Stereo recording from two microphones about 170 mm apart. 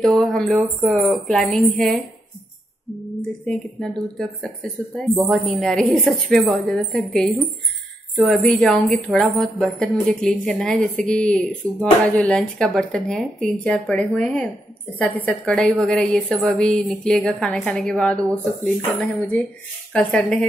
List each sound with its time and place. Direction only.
0.0 s speech: centre (ahead or behind)
3.4 s a woman's voice: centre (ahead or behind)